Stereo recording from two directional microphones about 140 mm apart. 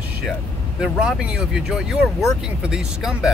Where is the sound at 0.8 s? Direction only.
5° right (ahead or behind).